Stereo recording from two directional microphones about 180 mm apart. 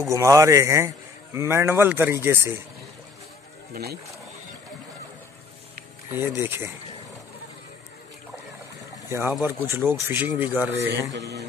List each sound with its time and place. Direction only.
0.1 s a man's voice: 15° right (ahead or behind)
3.7 s speech: 60° right (ahead or behind)
6.1 s a man's voice: 10° right (ahead or behind)
9.4 s a man's voice: 15° right (ahead or behind)
11.1 s speech: 70° right (ahead or behind)